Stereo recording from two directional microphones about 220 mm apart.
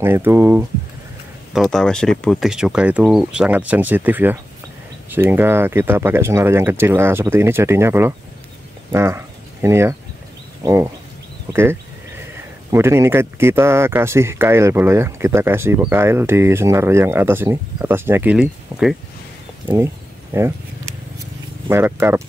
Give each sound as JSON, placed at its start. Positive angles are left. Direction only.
{"t": 0.0, "sound": "speech", "side_deg": -10}
{"t": 1.5, "sound": "speech", "side_deg": 0}
{"t": 20.3, "sound": "speech", "side_deg": -10}
{"t": 21.6, "sound": "speech", "side_deg": -10}